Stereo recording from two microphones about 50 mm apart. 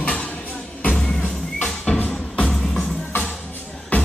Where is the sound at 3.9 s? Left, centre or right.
Left.